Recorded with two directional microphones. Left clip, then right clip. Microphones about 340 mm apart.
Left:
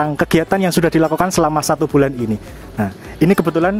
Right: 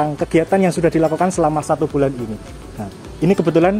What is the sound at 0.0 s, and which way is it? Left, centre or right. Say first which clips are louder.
Speech: left 1 dB; left.